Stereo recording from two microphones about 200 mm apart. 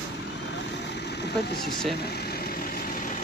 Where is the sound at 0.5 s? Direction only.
60° left (ahead or behind).